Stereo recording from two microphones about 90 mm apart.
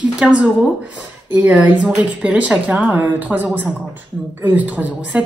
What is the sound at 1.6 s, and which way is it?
A woman's voice, 15° right (ahead or behind).